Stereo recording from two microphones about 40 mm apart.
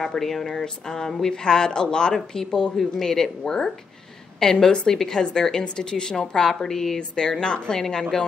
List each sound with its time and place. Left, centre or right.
0.1 s a woman's voice: centre